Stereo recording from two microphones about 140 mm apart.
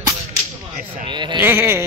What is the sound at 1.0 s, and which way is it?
Speech, 35° right (ahead or behind).